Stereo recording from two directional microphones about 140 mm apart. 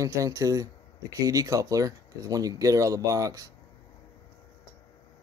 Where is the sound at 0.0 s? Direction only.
25° right (ahead or behind).